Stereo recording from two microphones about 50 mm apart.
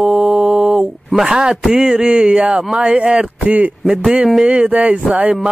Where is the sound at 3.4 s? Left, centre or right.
Right.